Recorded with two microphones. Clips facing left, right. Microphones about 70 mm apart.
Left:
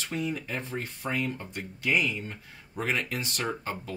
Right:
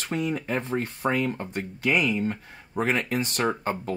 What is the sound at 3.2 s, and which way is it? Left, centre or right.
Speech, right.